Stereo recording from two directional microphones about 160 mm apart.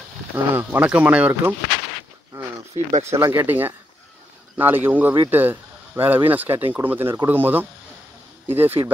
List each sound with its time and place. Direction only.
0.5 s speech: 10° right (ahead or behind)
2.3 s a sound: 10° right (ahead or behind)
2.7 s speech: 40° right (ahead or behind)
3.1 s speech: 15° right (ahead or behind)